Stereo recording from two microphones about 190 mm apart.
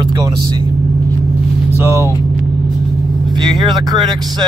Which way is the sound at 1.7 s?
15° right (ahead or behind).